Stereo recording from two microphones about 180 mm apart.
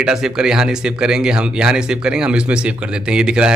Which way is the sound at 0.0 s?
5° right (ahead or behind).